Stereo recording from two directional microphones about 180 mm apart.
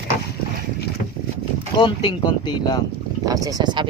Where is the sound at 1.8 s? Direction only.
25° left (ahead or behind).